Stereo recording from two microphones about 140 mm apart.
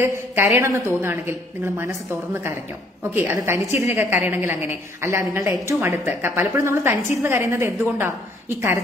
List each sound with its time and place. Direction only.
0.0 s a woman's voice: 15° right (ahead or behind)
3.0 s a woman's voice: 15° right (ahead or behind)